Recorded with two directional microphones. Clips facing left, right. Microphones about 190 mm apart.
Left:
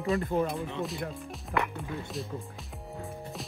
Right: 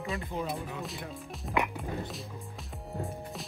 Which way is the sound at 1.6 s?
15° right (ahead or behind).